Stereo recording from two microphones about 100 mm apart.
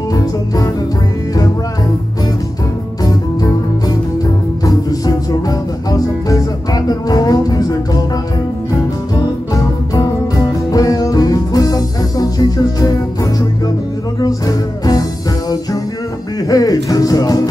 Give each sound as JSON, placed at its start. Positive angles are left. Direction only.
{"t": 0.1, "sound": "music", "side_deg": 35}
{"t": 4.6, "sound": "music", "side_deg": 35}
{"t": 9.1, "sound": "music", "side_deg": 35}
{"t": 16.4, "sound": "speech", "side_deg": 40}